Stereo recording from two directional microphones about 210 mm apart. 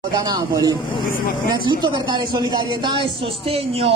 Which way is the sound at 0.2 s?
20° right (ahead or behind).